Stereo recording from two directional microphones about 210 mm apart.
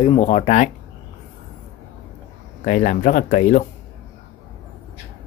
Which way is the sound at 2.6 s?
35° left (ahead or behind).